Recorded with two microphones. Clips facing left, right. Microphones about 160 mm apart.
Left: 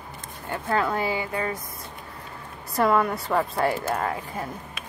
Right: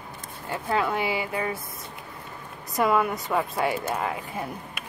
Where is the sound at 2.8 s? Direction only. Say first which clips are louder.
Left 1 dB; 5° right (ahead or behind).